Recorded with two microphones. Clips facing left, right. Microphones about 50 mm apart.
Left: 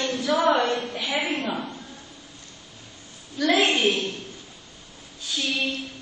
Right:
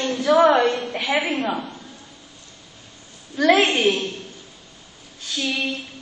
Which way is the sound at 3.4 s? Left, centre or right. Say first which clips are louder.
Right 4 dB; right.